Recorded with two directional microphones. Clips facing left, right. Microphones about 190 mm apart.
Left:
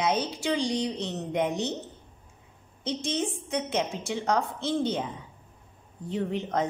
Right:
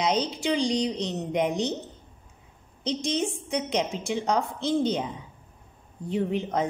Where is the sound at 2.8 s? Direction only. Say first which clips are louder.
Right 2 dB; 15° right (ahead or behind).